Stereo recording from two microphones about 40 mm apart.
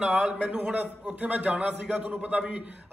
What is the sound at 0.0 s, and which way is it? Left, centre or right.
Speech, centre.